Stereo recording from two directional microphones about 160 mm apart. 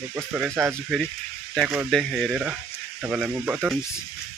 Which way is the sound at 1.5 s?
Centre (ahead or behind).